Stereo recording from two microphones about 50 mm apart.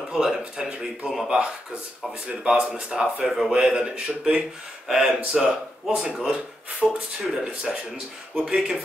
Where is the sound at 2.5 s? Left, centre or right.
Centre.